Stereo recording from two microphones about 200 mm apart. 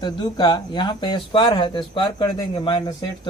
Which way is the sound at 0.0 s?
20° left (ahead or behind).